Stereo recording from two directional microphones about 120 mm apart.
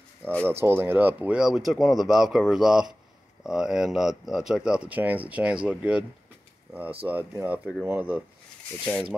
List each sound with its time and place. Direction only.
0.5 s speech: 20° right (ahead or behind)